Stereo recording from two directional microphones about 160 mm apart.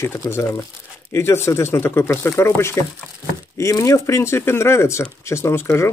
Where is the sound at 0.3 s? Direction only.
15° left (ahead or behind).